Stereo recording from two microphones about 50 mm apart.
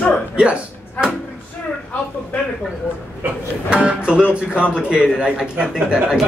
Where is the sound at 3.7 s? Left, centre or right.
Right.